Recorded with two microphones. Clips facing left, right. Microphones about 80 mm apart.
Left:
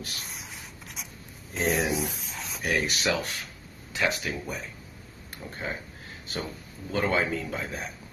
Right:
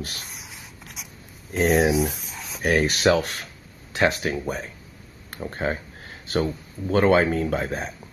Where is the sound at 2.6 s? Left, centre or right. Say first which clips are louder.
Right 8 dB; right.